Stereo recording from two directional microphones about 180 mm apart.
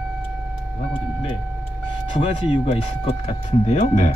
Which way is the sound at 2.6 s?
35° left (ahead or behind).